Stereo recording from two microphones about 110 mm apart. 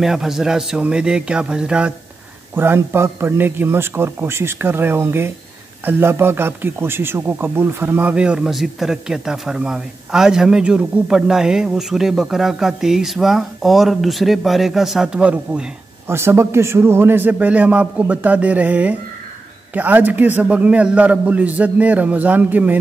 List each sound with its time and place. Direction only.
0.0 s a man's voice: 5° right (ahead or behind)
2.5 s a man's voice: 20° right (ahead or behind)
16.1 s a man's voice: 25° right (ahead or behind)